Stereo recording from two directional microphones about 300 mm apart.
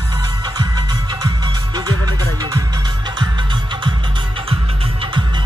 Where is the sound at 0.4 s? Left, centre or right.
Centre.